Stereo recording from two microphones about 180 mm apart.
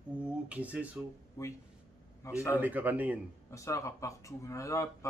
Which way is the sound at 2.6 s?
10° right (ahead or behind).